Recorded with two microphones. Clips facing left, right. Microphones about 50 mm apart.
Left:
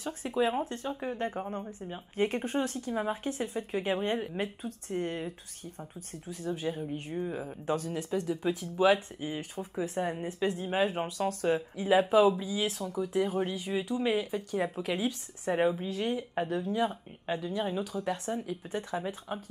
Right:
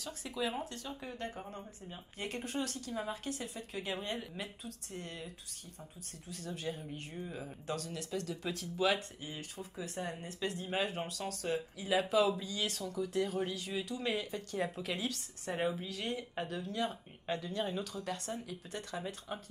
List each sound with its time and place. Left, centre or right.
0.0 s speech: left
8.0 s speech: centre
16.1 s speech: centre